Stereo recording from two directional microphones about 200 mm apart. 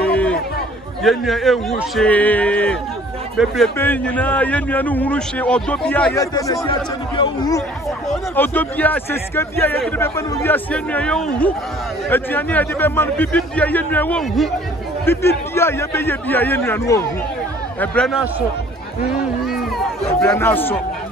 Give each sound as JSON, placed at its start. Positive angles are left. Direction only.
{"t": 0.0, "sound": "chatter", "side_deg": 5}
{"t": 1.0, "sound": "a man's voice", "side_deg": 0}
{"t": 8.1, "sound": "a man's voice", "side_deg": 10}
{"t": 15.0, "sound": "a man's voice", "side_deg": 10}
{"t": 17.7, "sound": "a man's voice", "side_deg": 5}
{"t": 20.2, "sound": "a man's voice", "side_deg": 10}